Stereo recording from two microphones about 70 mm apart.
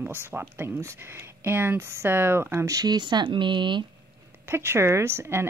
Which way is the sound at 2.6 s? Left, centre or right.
Right.